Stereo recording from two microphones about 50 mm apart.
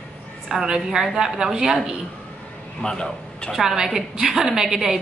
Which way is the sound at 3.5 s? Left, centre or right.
Centre.